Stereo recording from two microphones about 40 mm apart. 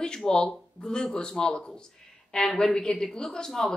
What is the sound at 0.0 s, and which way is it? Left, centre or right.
A woman's voice, centre.